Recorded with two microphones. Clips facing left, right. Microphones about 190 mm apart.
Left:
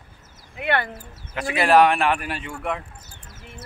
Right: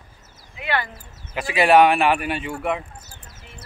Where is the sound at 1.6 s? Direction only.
5° right (ahead or behind).